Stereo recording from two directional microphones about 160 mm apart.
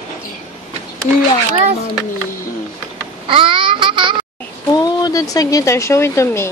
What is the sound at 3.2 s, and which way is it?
Babbling, 35° right (ahead or behind).